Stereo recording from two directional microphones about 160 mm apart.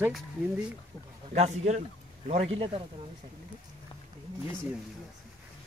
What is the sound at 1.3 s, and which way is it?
A man's voice, 50° right (ahead or behind).